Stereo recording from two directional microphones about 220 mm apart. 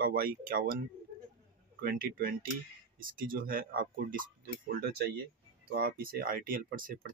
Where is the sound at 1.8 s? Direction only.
40° right (ahead or behind).